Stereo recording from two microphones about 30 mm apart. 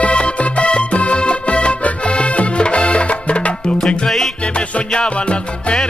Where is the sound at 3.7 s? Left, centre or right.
Left.